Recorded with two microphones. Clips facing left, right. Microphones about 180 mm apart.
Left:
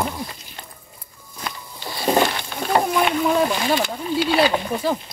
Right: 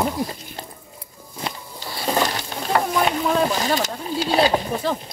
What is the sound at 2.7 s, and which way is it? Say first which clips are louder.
Boat: left 2 dB; 25° left (ahead or behind).